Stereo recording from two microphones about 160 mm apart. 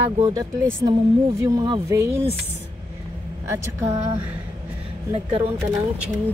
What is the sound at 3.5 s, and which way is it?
Speech, 15° right (ahead or behind).